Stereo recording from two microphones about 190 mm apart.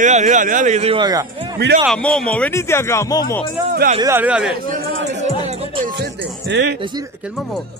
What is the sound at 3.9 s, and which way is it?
Speech, 15° right (ahead or behind).